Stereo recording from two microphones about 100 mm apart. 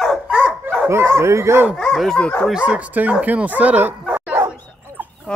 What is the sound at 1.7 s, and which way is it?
Speech, centre (ahead or behind).